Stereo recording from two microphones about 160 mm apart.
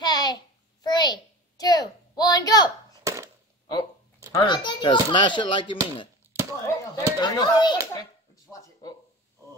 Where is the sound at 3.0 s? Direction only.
20° right (ahead or behind).